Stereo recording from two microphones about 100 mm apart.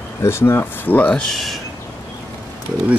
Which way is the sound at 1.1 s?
5° left (ahead or behind).